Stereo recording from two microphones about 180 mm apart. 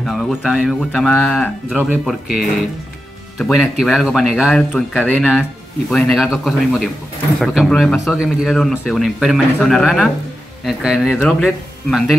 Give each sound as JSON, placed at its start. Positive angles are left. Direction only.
{"t": 0.0, "sound": "speech", "side_deg": 0}
{"t": 1.8, "sound": "speech", "side_deg": -5}